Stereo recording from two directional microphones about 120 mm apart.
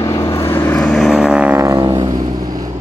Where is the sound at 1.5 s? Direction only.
25° right (ahead or behind).